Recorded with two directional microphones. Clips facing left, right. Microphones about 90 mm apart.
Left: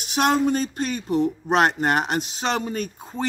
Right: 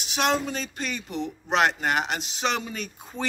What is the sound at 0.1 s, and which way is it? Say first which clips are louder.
Speech: left 5 dB; 50° left (ahead or behind).